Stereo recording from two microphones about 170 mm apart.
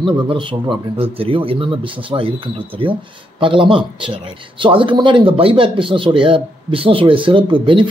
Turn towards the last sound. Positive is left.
turn(degrees=-30)  # may be behind; listen again after turning